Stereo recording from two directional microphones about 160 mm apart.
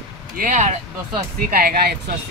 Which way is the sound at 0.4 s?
50° right (ahead or behind).